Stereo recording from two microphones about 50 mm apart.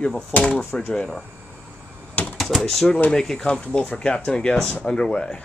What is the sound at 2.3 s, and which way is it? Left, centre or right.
Speech, centre.